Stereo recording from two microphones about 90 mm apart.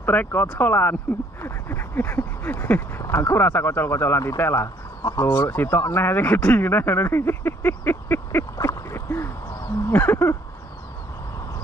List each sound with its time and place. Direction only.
0.0 s speech: 20° left (ahead or behind)
8.5 s a sound: 35° left (ahead or behind)
9.8 s speech: 25° left (ahead or behind)